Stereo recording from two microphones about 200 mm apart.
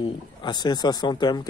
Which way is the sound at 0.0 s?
20° left (ahead or behind).